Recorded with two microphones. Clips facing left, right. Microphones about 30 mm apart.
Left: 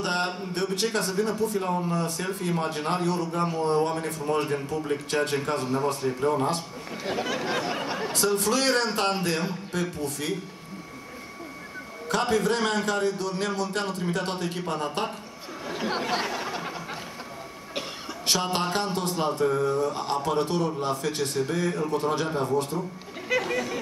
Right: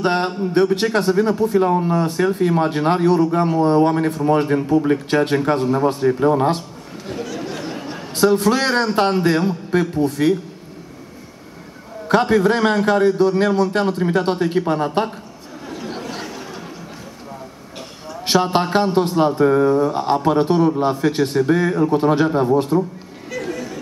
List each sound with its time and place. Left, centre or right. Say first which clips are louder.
0.0 s a man's voice: right 9 dB; right
8.1 s a man's voice: right 10 dB; right
12.1 s a man's voice: right 9 dB; right
15.8 s a sound: left 3 dB; left
18.2 s a man's voice: right 9 dB; right
23.3 s a sound: even; left